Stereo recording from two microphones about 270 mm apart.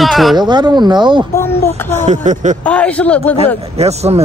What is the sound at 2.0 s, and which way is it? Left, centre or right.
Speech, right.